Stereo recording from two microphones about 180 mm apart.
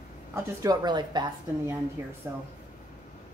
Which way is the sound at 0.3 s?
20° right (ahead or behind).